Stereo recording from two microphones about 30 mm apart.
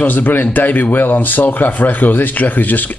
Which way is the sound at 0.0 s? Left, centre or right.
Left.